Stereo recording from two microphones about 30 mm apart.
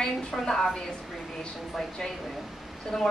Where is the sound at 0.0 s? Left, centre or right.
Centre.